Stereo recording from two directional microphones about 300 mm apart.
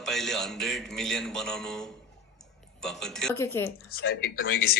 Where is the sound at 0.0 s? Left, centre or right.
Centre.